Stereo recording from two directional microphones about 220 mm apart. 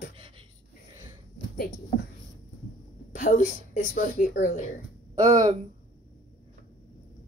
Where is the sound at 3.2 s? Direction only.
35° left (ahead or behind).